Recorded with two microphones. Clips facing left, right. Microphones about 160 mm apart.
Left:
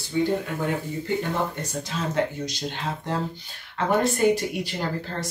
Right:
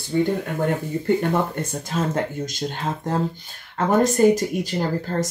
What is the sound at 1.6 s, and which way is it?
Speech, 50° right (ahead or behind).